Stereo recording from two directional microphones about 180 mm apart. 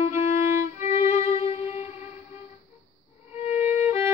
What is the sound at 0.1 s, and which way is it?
Violin, 15° right (ahead or behind).